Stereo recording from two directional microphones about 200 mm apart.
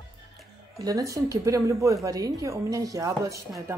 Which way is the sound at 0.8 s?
15° right (ahead or behind).